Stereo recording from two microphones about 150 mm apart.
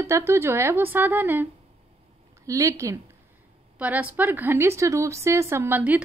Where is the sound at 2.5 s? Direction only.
20° right (ahead or behind).